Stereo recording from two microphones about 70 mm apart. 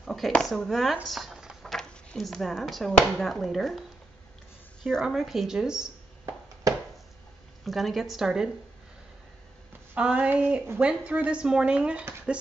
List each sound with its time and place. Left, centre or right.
0.0 s a woman's voice: centre
1.0 s a sound: centre
1.6 s a sound: centre
2.1 s a woman's voice: centre
5.0 s a woman's voice: centre
7.6 s a woman's voice: centre
9.9 s a woman's voice: centre